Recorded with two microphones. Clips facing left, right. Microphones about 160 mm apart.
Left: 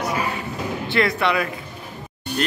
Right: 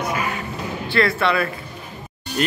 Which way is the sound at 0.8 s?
15° left (ahead or behind).